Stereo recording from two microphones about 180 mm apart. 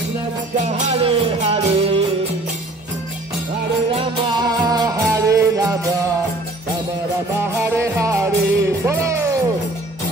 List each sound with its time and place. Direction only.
0.7 s music: 35° right (ahead or behind)
4.4 s music: 20° right (ahead or behind)
7.6 s music: 15° right (ahead or behind)